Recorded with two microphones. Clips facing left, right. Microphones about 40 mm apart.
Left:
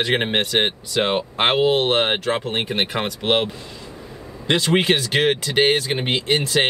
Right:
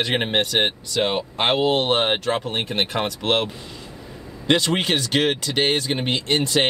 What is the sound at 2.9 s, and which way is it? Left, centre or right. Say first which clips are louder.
Speech: left 1 dB; centre.